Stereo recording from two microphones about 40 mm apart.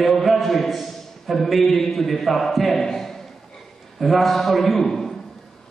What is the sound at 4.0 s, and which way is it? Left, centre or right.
A man's voice, centre.